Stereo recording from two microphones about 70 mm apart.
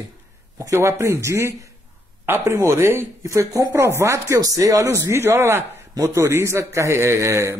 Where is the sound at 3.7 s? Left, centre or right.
Right.